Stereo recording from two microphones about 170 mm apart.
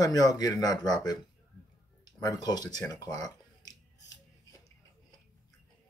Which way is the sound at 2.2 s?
25° left (ahead or behind).